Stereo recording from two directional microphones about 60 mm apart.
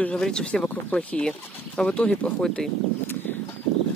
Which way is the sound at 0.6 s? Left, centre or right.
Left.